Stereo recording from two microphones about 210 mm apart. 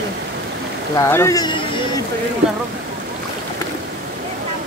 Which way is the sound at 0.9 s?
15° left (ahead or behind).